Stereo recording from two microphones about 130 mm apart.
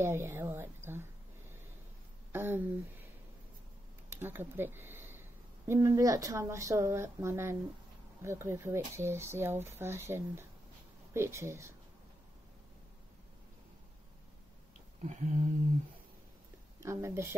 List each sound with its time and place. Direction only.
0.0 s a woman's voice: 20° right (ahead or behind)
2.3 s speech: 15° right (ahead or behind)
4.1 s a sound: 15° right (ahead or behind)
5.7 s speech: 25° right (ahead or behind)
15.0 s a sound: 65° right (ahead or behind)
16.8 s speech: 20° right (ahead or behind)